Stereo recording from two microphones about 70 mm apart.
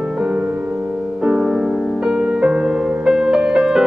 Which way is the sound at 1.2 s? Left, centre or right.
Centre.